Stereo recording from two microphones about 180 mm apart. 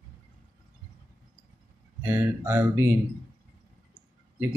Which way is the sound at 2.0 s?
15° right (ahead or behind).